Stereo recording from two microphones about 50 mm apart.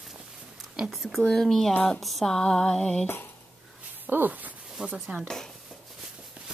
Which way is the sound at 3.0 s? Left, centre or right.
Left.